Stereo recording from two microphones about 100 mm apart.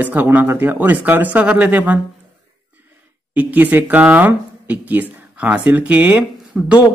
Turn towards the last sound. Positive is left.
turn(degrees=-10)  # may be behind; listen again after turning